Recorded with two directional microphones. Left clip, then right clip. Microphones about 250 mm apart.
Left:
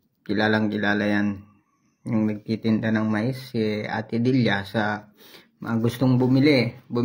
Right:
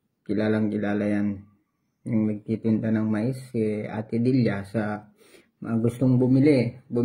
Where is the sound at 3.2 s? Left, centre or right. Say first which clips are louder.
Left 1 dB; left.